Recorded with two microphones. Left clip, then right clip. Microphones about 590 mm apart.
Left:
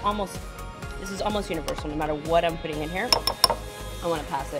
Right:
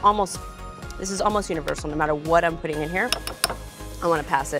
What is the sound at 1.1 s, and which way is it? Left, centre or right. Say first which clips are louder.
Speech: right 5 dB; right.